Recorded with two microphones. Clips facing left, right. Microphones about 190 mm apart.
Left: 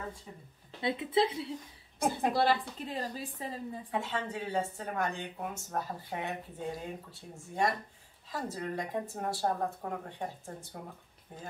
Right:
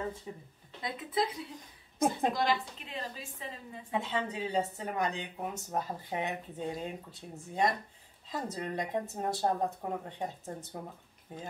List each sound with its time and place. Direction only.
0.8 s a woman's voice: 25° left (ahead or behind)
3.9 s speech: 20° right (ahead or behind)